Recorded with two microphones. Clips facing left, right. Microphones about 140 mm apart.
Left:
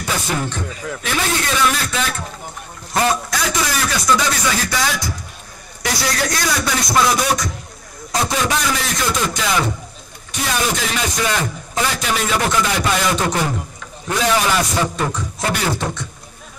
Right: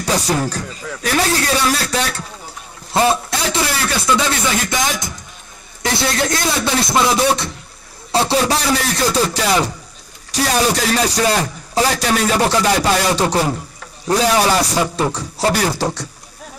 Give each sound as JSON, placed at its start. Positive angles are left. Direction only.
{"t": 0.0, "sound": "a man's voice", "side_deg": -35}